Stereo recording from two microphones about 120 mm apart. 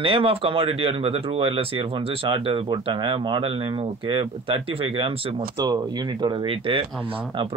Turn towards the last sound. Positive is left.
turn(degrees=-45)  # may be behind; listen again after turning